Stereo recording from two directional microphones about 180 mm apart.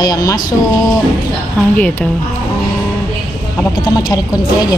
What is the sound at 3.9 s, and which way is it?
Speech, 20° left (ahead or behind).